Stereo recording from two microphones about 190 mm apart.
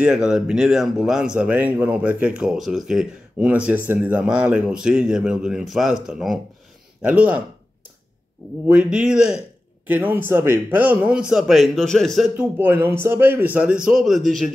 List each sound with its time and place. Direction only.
0.0 s a man's voice: 5° right (ahead or behind)
8.6 s a man's voice: 5° right (ahead or behind)